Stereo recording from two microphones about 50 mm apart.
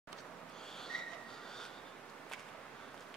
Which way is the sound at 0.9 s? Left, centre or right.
Centre.